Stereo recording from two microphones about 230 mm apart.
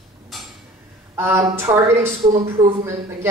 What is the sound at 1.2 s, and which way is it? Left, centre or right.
Speech, centre.